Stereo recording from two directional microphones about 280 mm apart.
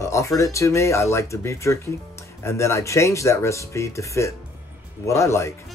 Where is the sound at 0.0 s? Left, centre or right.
Centre.